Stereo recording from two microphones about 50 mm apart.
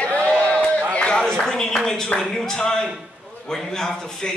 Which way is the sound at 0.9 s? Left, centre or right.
Centre.